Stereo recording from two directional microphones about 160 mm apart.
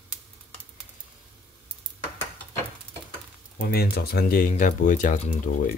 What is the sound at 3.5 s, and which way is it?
Speech, 75° left (ahead or behind).